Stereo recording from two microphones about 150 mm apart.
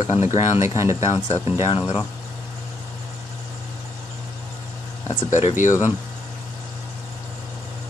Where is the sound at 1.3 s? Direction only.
40° left (ahead or behind).